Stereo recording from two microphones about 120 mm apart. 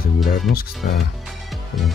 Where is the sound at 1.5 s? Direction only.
Centre (ahead or behind).